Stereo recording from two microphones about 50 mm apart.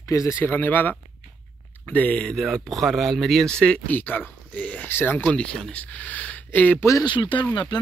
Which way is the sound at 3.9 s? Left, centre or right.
Left.